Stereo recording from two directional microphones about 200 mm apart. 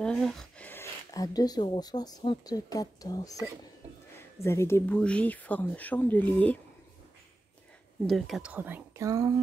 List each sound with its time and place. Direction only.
0.0 s speech: 5° left (ahead or behind)
8.1 s speech: centre (ahead or behind)